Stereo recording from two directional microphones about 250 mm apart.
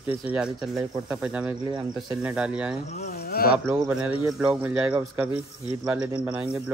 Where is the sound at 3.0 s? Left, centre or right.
Left.